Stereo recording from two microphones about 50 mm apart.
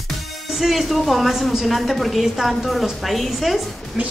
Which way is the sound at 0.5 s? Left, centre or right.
Centre.